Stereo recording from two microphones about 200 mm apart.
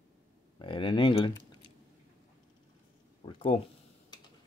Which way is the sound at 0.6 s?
25° left (ahead or behind).